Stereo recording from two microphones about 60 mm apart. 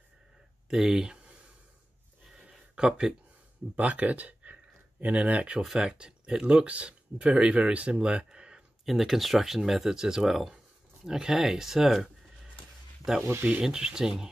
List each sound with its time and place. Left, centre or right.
0.7 s speech: centre
2.4 s a sound: centre
3.7 s speech: right
5.6 s speech: centre
13.5 s speech: centre